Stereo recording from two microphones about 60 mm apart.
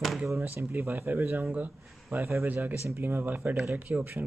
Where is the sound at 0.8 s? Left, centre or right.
Right.